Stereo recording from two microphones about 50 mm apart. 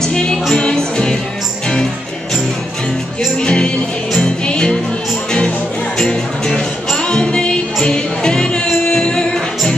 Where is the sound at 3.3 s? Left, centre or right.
Centre.